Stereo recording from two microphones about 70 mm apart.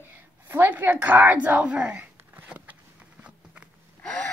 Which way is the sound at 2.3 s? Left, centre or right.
Right.